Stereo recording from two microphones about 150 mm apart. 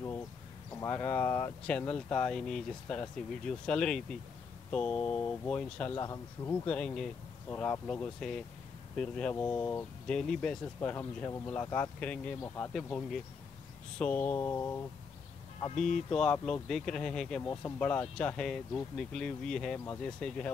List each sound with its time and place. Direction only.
0.7 s speech: 15° left (ahead or behind)
5.9 s speech: 20° left (ahead or behind)
12.7 s speech: 5° left (ahead or behind)
16.1 s speech: 5° left (ahead or behind)